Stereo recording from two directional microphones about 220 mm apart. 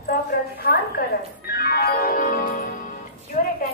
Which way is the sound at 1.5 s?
45° left (ahead or behind).